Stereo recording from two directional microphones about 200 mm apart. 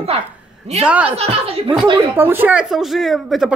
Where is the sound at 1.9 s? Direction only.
10° right (ahead or behind).